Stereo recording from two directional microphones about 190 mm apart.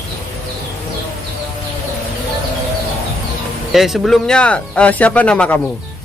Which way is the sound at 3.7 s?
Centre (ahead or behind).